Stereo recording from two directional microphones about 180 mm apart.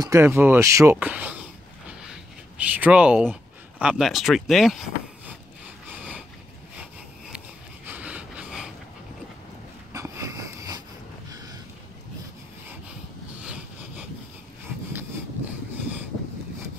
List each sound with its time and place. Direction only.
0.0 s speech: 15° right (ahead or behind)
1.9 s a sound: 5° right (ahead or behind)
3.8 s speech: centre (ahead or behind)
5.9 s vehicle: 5° right (ahead or behind)
7.3 s sniff: 10° right (ahead or behind)
9.9 s a sound: 15° right (ahead or behind)